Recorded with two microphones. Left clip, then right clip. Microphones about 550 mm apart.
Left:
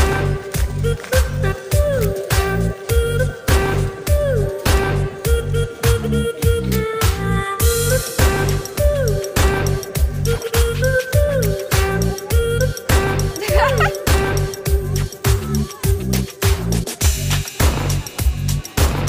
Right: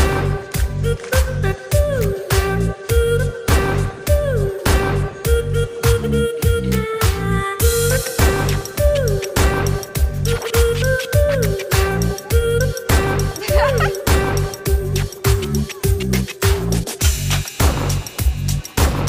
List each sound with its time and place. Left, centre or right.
0.0 s music: centre
13.6 s music: right
14.0 s music: centre